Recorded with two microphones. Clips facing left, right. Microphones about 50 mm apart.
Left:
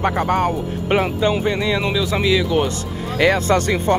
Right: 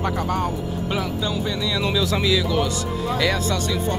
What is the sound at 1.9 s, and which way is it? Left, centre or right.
Speech, left.